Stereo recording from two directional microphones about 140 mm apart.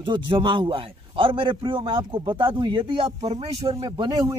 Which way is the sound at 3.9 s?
30° right (ahead or behind).